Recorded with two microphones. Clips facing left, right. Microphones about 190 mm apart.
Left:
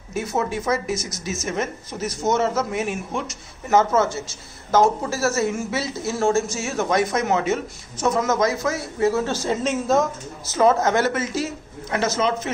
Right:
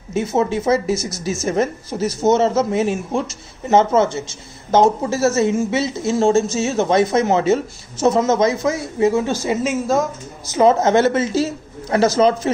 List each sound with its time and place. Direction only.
0.1 s speech: 20° right (ahead or behind); by 10.0 s centre (ahead or behind)
10.5 s speech: 20° right (ahead or behind)